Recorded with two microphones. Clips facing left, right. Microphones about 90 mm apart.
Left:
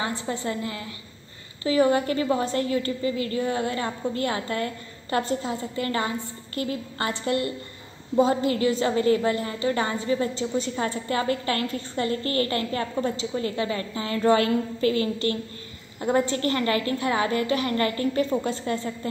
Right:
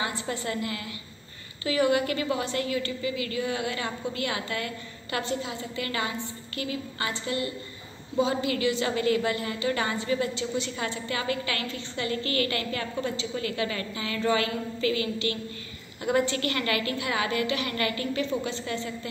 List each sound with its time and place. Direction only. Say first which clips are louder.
0.0 s a woman's voice: left 3 dB; 35° left (ahead or behind)